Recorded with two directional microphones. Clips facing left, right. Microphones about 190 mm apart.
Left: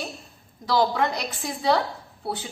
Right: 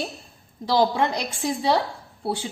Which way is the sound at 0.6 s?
25° right (ahead or behind).